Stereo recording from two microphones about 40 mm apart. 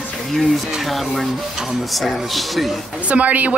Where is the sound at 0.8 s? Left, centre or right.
Centre.